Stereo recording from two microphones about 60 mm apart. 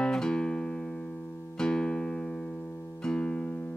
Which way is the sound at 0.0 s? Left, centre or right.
Centre.